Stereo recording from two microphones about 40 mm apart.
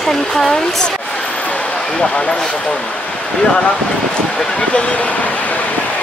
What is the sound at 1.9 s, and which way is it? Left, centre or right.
Speech, centre.